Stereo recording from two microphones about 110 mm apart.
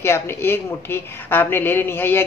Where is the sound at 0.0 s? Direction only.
20° left (ahead or behind).